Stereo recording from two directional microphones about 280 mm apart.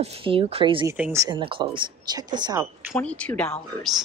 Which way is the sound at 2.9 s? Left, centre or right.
Centre.